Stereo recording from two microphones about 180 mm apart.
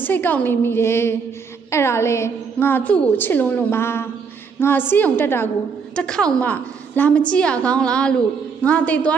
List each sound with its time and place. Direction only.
0.0 s a woman's voice: 10° left (ahead or behind)